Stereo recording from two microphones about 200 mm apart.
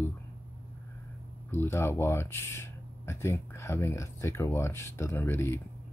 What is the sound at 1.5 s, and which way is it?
Speech, 10° left (ahead or behind).